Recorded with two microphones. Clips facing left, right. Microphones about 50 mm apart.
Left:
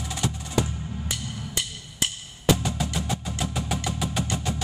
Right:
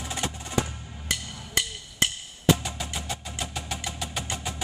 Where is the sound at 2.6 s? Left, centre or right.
Centre.